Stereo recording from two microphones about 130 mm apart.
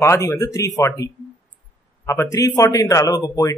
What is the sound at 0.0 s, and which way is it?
A man's voice, 20° left (ahead or behind).